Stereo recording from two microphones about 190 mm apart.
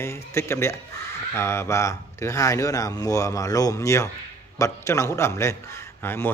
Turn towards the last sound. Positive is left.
turn(degrees=10)  # may be behind; listen again after turning